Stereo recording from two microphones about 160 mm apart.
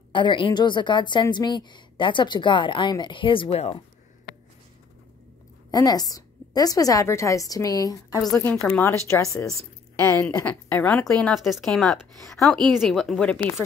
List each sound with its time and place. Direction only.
0.1 s a woman's voice: 30° left (ahead or behind)
5.7 s a woman's voice: 25° left (ahead or behind)
8.6 s a woman's voice: 10° left (ahead or behind)